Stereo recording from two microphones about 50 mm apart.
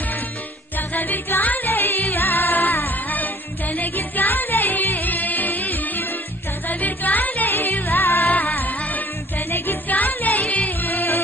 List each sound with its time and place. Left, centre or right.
0.7 s music: left
10.9 s music: left